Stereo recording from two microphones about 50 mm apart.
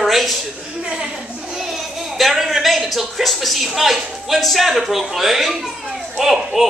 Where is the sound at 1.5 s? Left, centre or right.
Centre.